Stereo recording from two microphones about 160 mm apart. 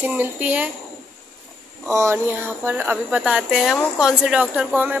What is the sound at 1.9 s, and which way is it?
Speech, 15° right (ahead or behind).